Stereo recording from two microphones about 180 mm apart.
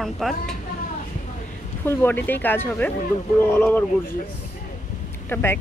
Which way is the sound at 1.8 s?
10° left (ahead or behind).